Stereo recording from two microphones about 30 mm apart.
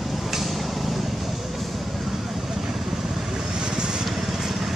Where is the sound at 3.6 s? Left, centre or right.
Right.